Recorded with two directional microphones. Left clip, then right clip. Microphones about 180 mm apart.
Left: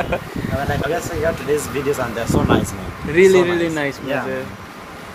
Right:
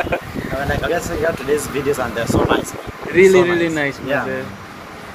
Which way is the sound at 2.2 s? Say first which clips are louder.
Right 1 dB; 10° left (ahead or behind).